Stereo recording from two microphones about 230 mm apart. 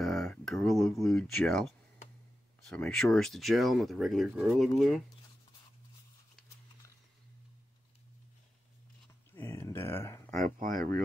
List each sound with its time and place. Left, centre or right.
0.0 s speech: centre
9.3 s a sound: centre
10.3 s speech: right